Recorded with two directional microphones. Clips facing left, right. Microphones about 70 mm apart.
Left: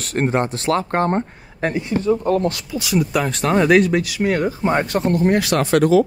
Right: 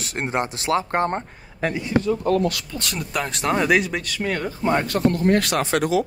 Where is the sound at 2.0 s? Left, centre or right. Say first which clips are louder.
Left 5 dB; left.